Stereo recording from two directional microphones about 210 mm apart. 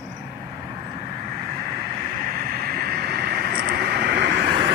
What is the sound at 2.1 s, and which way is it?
Vehicle, 40° right (ahead or behind).